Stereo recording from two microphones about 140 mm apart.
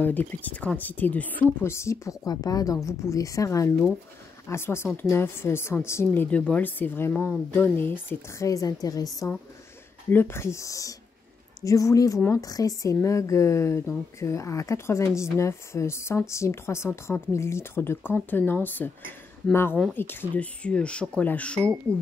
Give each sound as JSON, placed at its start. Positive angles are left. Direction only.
{"t": 0.0, "sound": "speech", "side_deg": 10}
{"t": 21.9, "sound": "speech", "side_deg": -20}